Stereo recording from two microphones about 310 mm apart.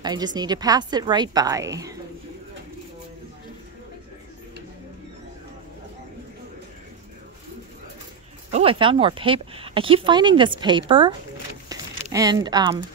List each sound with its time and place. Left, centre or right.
0.0 s speech: centre
8.5 s speech: centre